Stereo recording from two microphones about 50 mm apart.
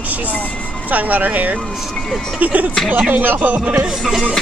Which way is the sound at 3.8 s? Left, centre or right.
Centre.